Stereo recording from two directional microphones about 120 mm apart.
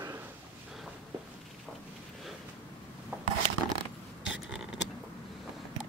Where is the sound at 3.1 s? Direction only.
15° right (ahead or behind).